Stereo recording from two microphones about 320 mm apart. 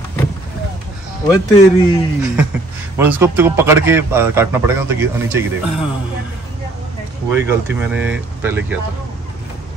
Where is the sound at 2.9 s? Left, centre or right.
Centre.